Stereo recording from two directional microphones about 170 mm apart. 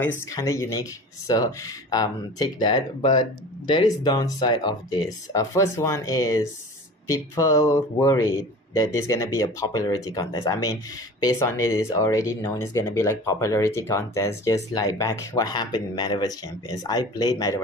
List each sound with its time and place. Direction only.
0.3 s speech: 20° left (ahead or behind)